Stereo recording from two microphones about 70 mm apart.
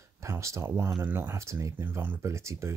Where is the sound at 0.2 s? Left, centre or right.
Right.